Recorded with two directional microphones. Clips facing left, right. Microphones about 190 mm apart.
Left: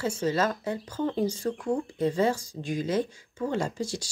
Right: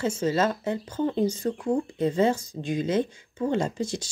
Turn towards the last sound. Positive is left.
turn(degrees=-20)  # may be behind; listen again after turning